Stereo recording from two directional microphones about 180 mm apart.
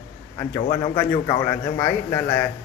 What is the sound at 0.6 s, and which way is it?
Speech, 30° left (ahead or behind).